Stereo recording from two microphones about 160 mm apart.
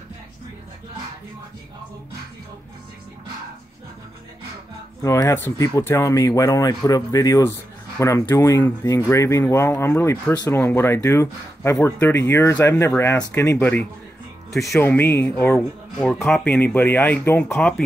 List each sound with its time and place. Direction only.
5.0 s speech: 20° left (ahead or behind)
14.5 s speech: centre (ahead or behind)
14.8 s speech: 15° left (ahead or behind)